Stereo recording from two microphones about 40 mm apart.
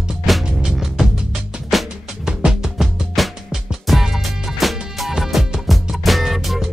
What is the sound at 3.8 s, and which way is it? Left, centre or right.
Music, centre.